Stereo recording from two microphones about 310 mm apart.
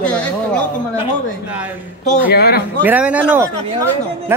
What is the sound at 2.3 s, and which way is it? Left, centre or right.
Speech, left.